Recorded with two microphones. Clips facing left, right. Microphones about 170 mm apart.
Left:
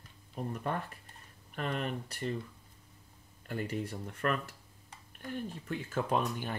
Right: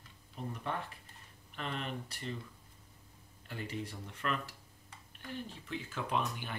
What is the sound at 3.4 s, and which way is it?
Speech, 45° left (ahead or behind).